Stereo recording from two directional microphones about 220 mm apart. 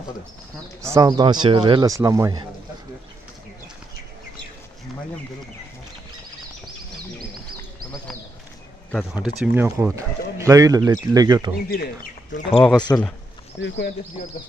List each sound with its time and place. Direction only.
0.8 s speech: 15° right (ahead or behind)
8.9 s speech: 5° right (ahead or behind)
11.7 s speech: 40° left (ahead or behind)
12.5 s speech: 5° left (ahead or behind)
13.6 s speech: 50° left (ahead or behind)